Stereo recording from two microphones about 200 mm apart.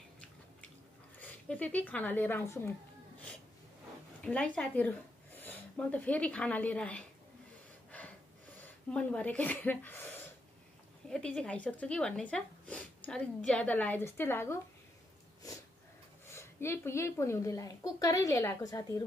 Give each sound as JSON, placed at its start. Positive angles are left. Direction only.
{"t": 1.1, "sound": "a woman's voice", "side_deg": 5}
{"t": 4.2, "sound": "speech", "side_deg": 5}
{"t": 8.9, "sound": "speech", "side_deg": 5}
{"t": 11.1, "sound": "speech", "side_deg": 5}
{"t": 16.3, "sound": "speech", "side_deg": 15}